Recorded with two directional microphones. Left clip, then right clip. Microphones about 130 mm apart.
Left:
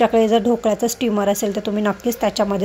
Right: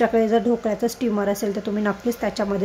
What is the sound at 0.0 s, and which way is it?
Speech, 15° left (ahead or behind).